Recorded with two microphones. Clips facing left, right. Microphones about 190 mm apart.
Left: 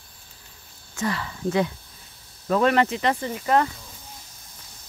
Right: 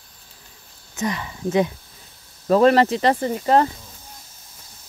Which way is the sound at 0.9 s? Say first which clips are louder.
Right 2 dB; 20° right (ahead or behind).